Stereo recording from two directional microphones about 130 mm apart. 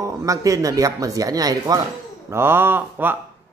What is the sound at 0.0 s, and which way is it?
Speech, 25° right (ahead or behind).